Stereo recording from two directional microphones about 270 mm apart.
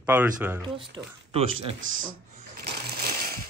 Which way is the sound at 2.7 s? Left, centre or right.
Right.